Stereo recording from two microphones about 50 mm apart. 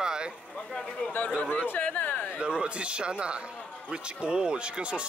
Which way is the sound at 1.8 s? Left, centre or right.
Left.